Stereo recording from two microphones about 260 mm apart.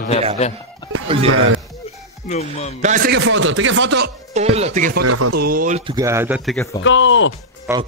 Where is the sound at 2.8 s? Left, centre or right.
Right.